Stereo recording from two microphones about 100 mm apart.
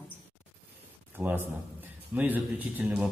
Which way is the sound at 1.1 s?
20° right (ahead or behind).